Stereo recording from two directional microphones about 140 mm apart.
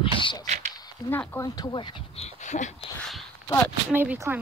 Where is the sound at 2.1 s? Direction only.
50° left (ahead or behind).